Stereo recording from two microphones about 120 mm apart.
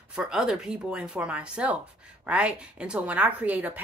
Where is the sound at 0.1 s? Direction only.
5° right (ahead or behind).